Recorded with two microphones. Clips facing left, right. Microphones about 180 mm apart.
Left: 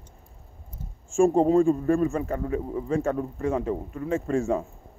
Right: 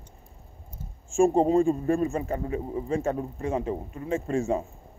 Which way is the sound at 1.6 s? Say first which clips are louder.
Left 2 dB; 20° right (ahead or behind).